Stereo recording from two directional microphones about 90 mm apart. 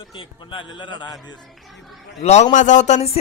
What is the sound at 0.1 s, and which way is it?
A man's voice, 70° left (ahead or behind).